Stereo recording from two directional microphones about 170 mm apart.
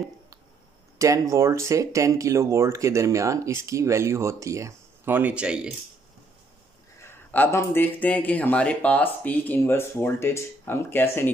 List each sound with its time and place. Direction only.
0.9 s speech: 20° right (ahead or behind)
7.0 s speech: 10° left (ahead or behind)